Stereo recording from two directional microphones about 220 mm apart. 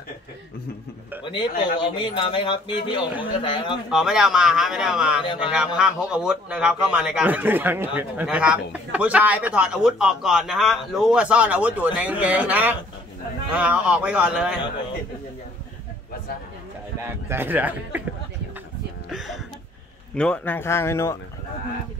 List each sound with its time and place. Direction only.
1.2 s speech: 20° left (ahead or behind)
3.9 s speech: centre (ahead or behind)
5.2 s speech: 20° left (ahead or behind)
5.8 s speech: 5° right (ahead or behind)
17.0 s speech: 10° right (ahead or behind)
19.0 s a sound: centre (ahead or behind)
20.2 s speech: 5° left (ahead or behind)